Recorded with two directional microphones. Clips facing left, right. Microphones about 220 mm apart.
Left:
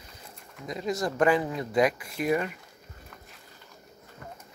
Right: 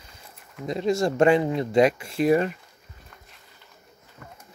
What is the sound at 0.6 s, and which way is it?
Speech, 30° right (ahead or behind).